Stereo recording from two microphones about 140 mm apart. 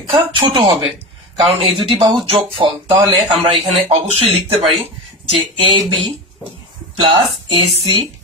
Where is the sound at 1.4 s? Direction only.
40° right (ahead or behind).